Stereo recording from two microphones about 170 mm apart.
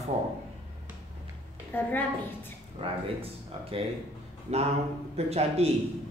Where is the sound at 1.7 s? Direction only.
10° left (ahead or behind).